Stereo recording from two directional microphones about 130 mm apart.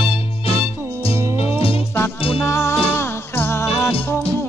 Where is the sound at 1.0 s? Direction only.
50° left (ahead or behind).